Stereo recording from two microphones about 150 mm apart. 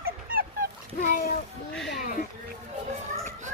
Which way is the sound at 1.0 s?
65° left (ahead or behind).